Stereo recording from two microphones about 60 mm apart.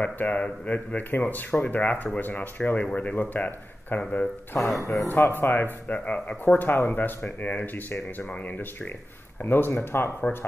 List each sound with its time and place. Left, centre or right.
0.0 s speech: left
4.6 s speech: centre
5.0 s speech: left
6.4 s speech: left